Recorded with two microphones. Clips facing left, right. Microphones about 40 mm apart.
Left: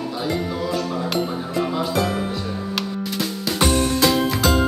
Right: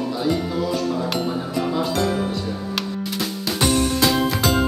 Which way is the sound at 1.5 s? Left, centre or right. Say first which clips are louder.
Left 1 dB; centre.